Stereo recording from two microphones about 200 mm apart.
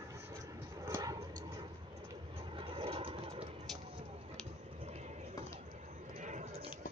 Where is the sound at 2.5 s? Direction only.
25° right (ahead or behind).